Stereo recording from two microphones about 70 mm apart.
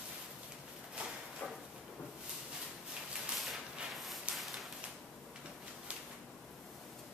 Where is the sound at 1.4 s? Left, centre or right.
Centre.